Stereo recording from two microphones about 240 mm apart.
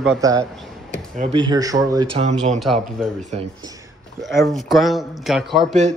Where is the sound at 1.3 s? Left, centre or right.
Centre.